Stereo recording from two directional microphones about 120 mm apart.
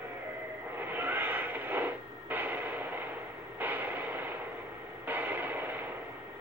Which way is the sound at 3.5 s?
15° right (ahead or behind).